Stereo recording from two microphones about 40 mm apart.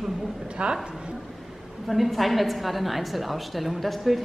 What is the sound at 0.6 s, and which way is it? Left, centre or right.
Speech, right.